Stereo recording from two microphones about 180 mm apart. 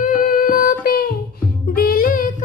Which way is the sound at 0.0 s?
45° left (ahead or behind).